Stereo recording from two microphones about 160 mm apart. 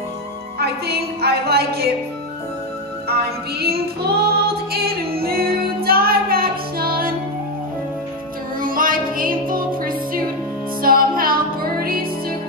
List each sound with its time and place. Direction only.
0.6 s a woman's voice: 85° right
3.1 s music: 80° right
8.5 s music: 60° right (ahead or behind)